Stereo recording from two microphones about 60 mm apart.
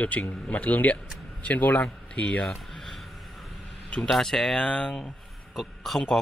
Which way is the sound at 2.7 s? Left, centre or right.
Centre.